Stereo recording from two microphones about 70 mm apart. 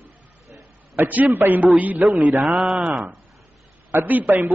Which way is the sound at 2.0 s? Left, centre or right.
Centre.